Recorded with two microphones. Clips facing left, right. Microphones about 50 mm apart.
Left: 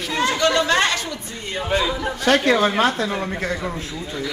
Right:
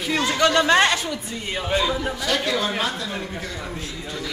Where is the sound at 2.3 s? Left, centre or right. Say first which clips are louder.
Left 8 dB; left.